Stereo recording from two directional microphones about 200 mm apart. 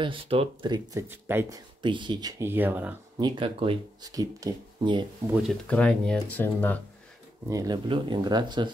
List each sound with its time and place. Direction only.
0.0 s speech: 25° right (ahead or behind)
1.0 s speech: 10° right (ahead or behind)
1.8 s speech: 25° right (ahead or behind)
3.2 s speech: 25° right (ahead or behind)
5.3 s speech: centre (ahead or behind)
7.4 s speech: 20° right (ahead or behind)